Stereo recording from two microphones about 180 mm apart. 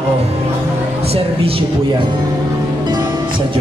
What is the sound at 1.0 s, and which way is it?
Speech, 30° right (ahead or behind).